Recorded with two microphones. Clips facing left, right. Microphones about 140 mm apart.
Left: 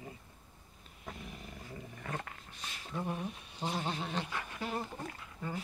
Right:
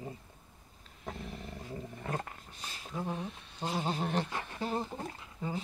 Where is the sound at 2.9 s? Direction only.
5° left (ahead or behind).